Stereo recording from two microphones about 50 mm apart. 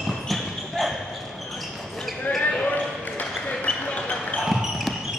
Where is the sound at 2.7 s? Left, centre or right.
Left.